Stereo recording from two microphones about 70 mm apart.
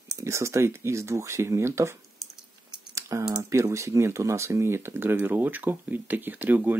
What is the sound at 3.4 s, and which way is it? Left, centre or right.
Speech, right.